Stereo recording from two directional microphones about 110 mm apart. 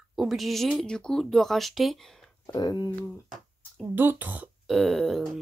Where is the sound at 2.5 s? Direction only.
40° left (ahead or behind).